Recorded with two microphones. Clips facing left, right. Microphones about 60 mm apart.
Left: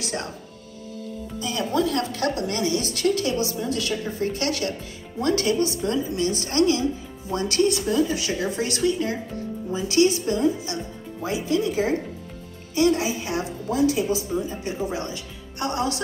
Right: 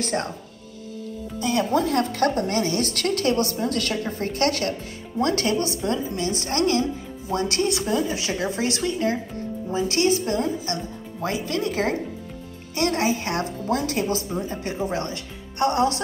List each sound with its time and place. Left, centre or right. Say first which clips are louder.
0.0 s a woman's voice: right 4 dB; right
1.4 s a woman's voice: right 2 dB; right
14.3 s a woman's voice: left 1 dB; right